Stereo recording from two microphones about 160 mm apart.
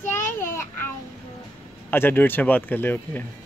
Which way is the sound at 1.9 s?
10° left (ahead or behind).